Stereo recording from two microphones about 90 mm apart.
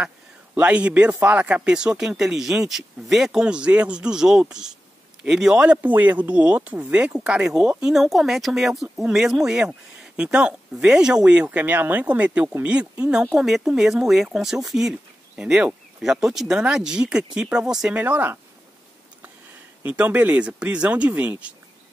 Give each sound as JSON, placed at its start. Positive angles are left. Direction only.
{"t": 0.6, "sound": "speech", "side_deg": -15}
{"t": 17.9, "sound": "speech", "side_deg": -20}
{"t": 19.8, "sound": "speech", "side_deg": -15}